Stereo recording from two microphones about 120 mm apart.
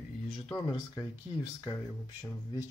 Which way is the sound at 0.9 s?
25° left (ahead or behind).